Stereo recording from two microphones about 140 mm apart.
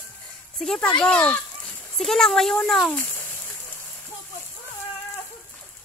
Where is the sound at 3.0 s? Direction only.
20° left (ahead or behind).